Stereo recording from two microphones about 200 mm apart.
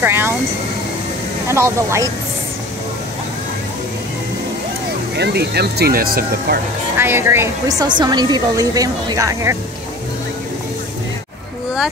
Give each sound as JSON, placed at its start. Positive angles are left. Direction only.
{"t": 0.0, "sound": "vehicle", "side_deg": -10}
{"t": 1.5, "sound": "a woman's voice", "side_deg": -15}
{"t": 5.1, "sound": "speech", "side_deg": -55}
{"t": 7.0, "sound": "a woman's voice", "side_deg": -10}